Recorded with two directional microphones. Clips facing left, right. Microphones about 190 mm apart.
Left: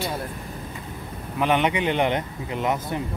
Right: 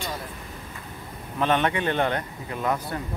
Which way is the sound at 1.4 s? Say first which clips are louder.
Left 2 dB; 15° left (ahead or behind).